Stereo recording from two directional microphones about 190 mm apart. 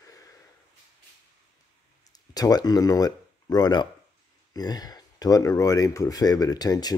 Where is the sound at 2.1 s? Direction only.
20° left (ahead or behind).